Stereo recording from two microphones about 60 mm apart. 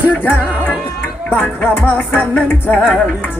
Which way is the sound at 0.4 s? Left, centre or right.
Right.